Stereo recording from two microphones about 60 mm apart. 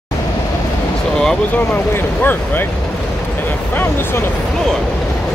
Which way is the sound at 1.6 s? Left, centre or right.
Left.